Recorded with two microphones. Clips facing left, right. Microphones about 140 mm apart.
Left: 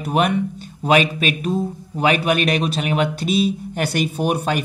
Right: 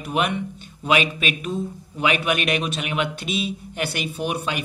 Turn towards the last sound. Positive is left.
turn(degrees=45)  # may be behind; listen again after turning